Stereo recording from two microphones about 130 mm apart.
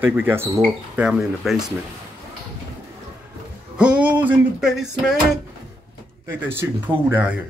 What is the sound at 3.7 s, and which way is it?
Speech, 10° right (ahead or behind).